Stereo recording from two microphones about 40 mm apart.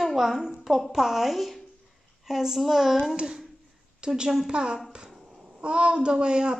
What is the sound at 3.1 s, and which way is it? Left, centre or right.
A woman's voice, centre.